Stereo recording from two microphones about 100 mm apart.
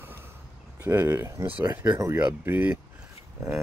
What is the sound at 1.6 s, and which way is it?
Speech, 35° right (ahead or behind).